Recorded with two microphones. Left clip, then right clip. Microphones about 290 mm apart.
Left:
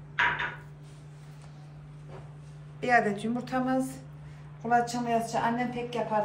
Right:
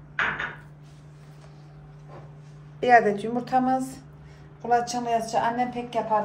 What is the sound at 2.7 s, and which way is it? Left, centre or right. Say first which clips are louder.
A woman's voice: right 7 dB; right.